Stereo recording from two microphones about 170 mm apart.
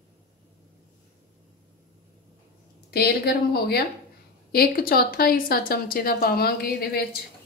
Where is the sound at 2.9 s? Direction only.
70° left (ahead or behind).